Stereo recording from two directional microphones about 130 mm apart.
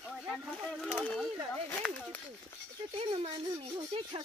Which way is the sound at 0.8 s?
10° left (ahead or behind).